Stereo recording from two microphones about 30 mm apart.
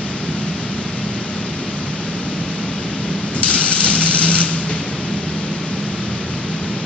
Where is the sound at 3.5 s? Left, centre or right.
Left.